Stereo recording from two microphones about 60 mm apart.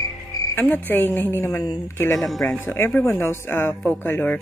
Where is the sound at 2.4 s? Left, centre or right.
Left.